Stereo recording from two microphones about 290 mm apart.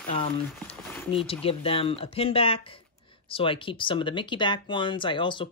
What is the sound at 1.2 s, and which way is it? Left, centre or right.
Speech, centre.